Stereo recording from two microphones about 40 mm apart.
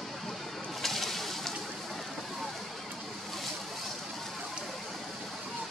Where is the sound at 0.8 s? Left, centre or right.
Centre.